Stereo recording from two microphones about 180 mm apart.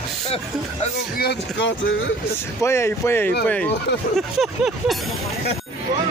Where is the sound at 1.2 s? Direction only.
65° left (ahead or behind).